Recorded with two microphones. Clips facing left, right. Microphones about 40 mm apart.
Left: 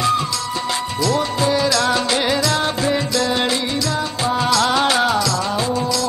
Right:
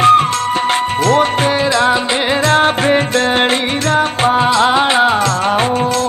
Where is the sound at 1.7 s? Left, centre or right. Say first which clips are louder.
Right 5 dB; right.